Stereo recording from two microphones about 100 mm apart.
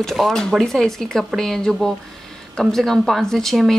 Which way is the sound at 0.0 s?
Centre (ahead or behind).